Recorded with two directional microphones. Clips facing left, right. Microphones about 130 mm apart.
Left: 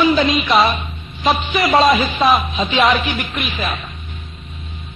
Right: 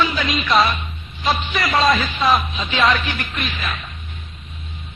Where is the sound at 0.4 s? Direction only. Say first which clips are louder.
Left 2 dB; centre (ahead or behind).